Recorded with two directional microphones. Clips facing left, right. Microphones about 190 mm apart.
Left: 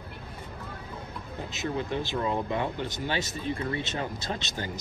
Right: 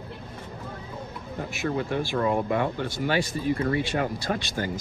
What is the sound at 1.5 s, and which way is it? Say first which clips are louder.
Speech: right 3 dB; 20° left (ahead or behind).